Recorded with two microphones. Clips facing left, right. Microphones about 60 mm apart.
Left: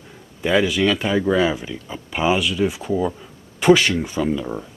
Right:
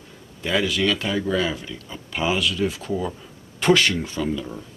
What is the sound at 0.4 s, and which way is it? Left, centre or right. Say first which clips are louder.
Speech: left 4 dB; centre.